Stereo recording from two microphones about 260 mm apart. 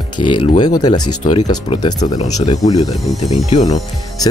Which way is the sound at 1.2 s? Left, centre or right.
Left.